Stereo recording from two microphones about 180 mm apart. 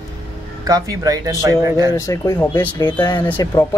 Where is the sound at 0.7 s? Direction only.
20° right (ahead or behind).